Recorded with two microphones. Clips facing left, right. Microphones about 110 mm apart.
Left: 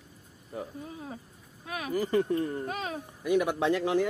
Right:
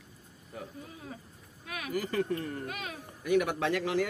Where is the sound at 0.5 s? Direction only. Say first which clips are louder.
Left 5 dB; 30° left (ahead or behind).